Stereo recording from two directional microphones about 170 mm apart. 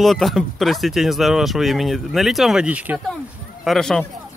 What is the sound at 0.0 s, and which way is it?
Speech, centre (ahead or behind).